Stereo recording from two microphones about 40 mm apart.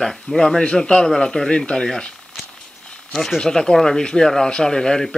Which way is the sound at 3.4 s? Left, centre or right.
Centre.